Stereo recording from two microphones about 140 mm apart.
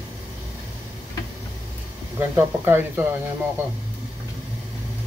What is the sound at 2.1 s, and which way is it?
Speech, 15° right (ahead or behind).